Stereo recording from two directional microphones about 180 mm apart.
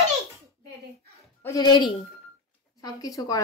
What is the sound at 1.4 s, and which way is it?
A woman's voice, 20° left (ahead or behind).